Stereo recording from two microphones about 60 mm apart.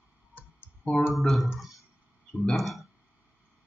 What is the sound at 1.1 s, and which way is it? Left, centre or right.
Speech, centre.